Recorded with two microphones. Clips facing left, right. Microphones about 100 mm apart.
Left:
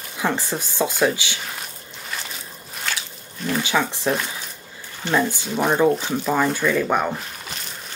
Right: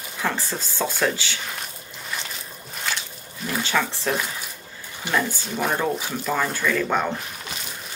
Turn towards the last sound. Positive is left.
turn(degrees=15)  # may be behind; listen again after turning